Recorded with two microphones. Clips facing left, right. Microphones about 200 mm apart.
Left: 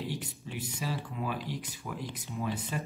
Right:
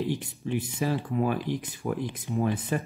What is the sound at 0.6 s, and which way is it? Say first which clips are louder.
Speech: right 7 dB; 50° right (ahead or behind).